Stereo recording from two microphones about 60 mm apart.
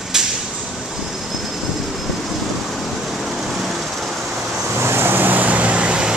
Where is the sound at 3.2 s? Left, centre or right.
Centre.